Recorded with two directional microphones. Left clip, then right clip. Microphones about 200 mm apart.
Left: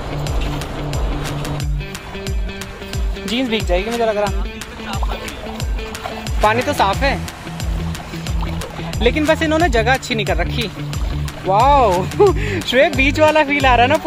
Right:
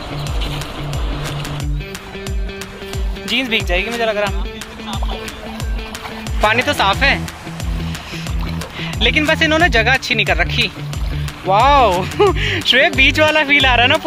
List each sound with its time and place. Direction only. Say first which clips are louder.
0.6 s music: left 1 dB; centre (ahead or behind)
3.3 s speech: right 2 dB; 15° left (ahead or behind)
6.4 s speech: right 1 dB; centre (ahead or behind)
8.5 s speech: right 7 dB; 5° left (ahead or behind)